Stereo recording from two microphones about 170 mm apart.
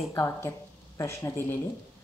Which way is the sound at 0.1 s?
15° left (ahead or behind).